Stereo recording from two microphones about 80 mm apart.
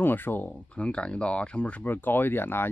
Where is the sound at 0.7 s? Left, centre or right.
Centre.